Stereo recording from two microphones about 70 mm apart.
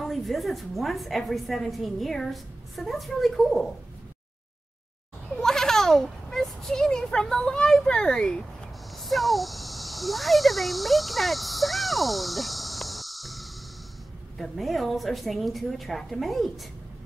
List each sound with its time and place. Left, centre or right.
0.0 s a woman's voice: centre
5.3 s a sound: centre
8.9 s a woman's voice: centre